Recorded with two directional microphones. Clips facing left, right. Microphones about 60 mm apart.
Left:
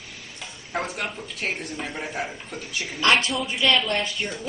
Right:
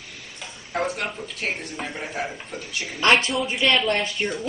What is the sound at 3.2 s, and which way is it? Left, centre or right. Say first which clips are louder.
Speech: right 2 dB; centre.